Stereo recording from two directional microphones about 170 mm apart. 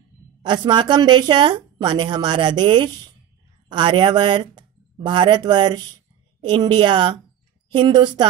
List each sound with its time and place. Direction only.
0.4 s a woman's voice: 25° right (ahead or behind)